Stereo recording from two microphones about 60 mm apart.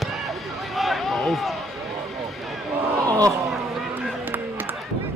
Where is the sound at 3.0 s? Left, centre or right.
Right.